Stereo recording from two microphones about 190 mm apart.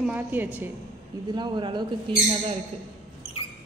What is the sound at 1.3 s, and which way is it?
Speech, 25° right (ahead or behind).